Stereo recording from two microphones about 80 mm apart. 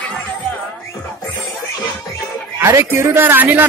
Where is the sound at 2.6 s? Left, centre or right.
Right.